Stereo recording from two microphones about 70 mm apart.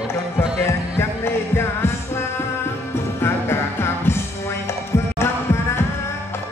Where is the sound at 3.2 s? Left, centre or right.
Left.